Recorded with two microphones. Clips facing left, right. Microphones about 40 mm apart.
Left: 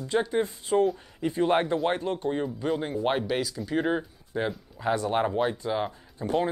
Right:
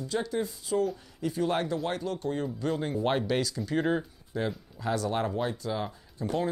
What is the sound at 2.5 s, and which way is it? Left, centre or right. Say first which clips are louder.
Speech: left 2 dB; centre.